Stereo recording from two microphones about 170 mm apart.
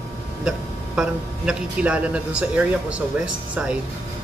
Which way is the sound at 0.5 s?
5° right (ahead or behind).